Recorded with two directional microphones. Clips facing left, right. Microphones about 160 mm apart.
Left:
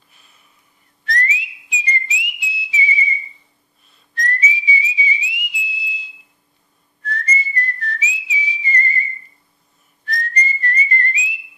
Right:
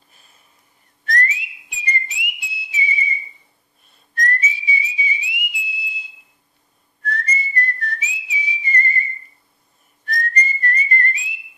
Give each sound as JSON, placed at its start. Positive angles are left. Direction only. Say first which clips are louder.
{"t": 0.1, "sound": "sniff", "louder": "even", "side_deg": -40}
{"t": 1.0, "sound": "whistling", "louder": "even", "side_deg": -50}
{"t": 10.0, "sound": "whistling", "louder": "even", "side_deg": -50}